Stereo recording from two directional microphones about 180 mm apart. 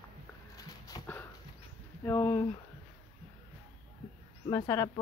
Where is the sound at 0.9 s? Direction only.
30° left (ahead or behind).